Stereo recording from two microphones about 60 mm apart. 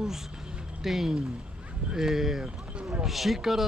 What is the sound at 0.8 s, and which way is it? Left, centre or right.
A woman's voice, centre.